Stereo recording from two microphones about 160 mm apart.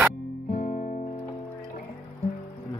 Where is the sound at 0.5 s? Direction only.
50° left (ahead or behind).